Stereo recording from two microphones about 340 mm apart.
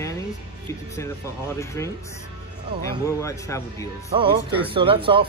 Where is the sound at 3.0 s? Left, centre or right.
Centre.